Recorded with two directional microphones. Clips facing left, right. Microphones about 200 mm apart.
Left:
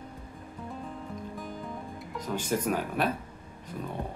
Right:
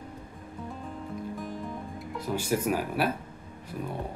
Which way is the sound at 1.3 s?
Centre (ahead or behind).